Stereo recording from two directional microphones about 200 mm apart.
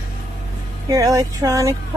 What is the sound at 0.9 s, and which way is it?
Speech, 15° right (ahead or behind).